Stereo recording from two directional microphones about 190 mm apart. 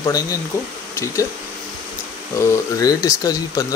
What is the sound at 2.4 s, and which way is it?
Speech, 15° left (ahead or behind).